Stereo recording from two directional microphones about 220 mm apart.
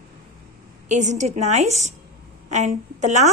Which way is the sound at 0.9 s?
30° right (ahead or behind).